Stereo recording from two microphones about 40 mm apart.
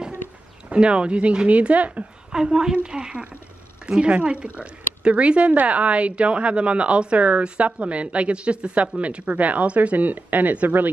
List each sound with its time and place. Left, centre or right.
0.7 s speech: right
2.3 s a woman's voice: centre; by 9.9 s right
9.9 s speech: right